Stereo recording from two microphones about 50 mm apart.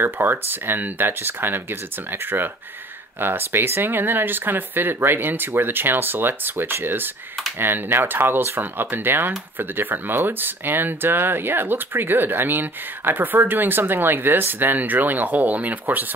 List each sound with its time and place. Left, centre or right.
0.0 s speech: right